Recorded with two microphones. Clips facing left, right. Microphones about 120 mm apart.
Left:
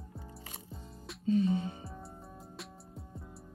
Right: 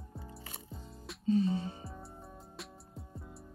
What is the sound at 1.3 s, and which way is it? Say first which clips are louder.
Speech: left 1 dB; 35° right (ahead or behind).